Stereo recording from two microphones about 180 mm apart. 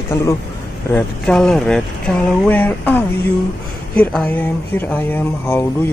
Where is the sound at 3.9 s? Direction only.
5° left (ahead or behind).